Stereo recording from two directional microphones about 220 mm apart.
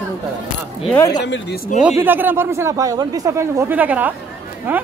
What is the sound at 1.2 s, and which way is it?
Speech, 50° left (ahead or behind).